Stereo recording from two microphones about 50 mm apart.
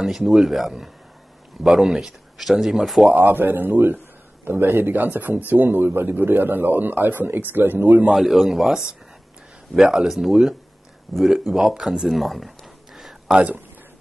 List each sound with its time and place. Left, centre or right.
0.0 s speech: centre
3.2 s speech: right
8.1 s speech: centre
12.2 s a sound: centre